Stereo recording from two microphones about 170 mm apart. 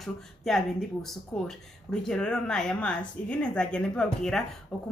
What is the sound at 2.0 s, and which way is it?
Speech, 5° left (ahead or behind).